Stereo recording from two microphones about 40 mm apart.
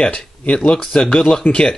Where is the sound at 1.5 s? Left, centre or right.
Left.